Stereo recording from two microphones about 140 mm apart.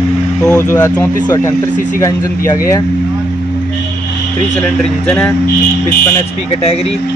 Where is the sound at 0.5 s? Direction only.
25° left (ahead or behind).